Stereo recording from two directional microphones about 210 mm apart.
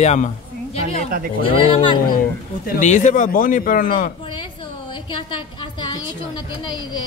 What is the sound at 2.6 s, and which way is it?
A man's voice, 35° left (ahead or behind).